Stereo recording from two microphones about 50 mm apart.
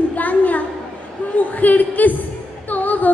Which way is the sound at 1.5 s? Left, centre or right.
Left.